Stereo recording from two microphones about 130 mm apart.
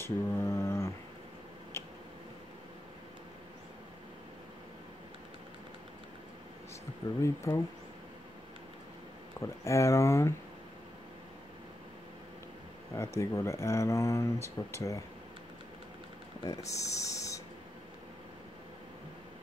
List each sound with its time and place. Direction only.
0.0 s a sound: 20° left (ahead or behind)
7.2 s speech: 20° left (ahead or behind)
9.4 s speech: 20° left (ahead or behind)
12.9 s speech: 20° left (ahead or behind)
16.4 s speech: 25° left (ahead or behind)